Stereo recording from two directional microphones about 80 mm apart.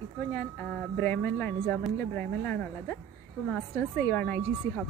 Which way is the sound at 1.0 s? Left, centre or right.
Left.